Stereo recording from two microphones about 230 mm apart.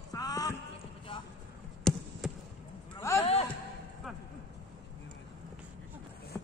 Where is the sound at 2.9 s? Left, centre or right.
Centre.